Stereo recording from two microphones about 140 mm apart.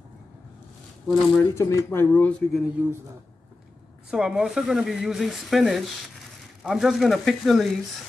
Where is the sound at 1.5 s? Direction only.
20° left (ahead or behind).